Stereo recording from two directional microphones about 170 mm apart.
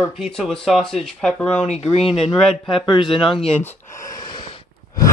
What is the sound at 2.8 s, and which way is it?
Speech, 30° left (ahead or behind).